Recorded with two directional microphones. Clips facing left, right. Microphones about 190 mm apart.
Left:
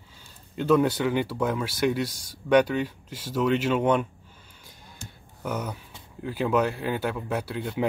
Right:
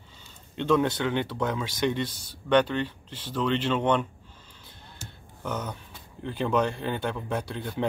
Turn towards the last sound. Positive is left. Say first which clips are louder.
# left 2 dB
turn(degrees=5)  # may be behind; listen again after turning